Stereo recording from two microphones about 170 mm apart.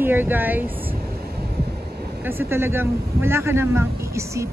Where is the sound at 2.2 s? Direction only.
15° right (ahead or behind).